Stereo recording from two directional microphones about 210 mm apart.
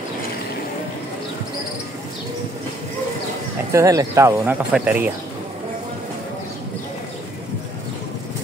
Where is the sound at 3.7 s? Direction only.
15° right (ahead or behind).